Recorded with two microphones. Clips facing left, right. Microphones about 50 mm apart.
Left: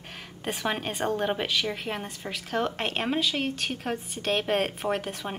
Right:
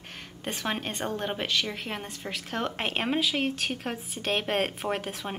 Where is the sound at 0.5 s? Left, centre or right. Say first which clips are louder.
Left 2 dB; centre.